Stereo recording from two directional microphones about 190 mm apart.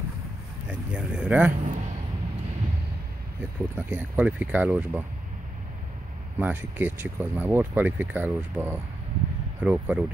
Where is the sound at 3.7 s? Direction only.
10° right (ahead or behind).